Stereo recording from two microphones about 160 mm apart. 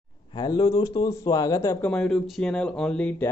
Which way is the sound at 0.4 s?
25° left (ahead or behind).